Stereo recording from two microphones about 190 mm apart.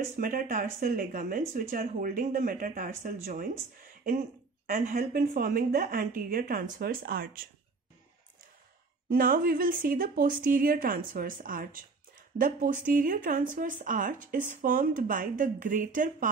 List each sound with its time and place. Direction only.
0.2 s speech: 45° right (ahead or behind)
9.1 s speech: 50° right (ahead or behind)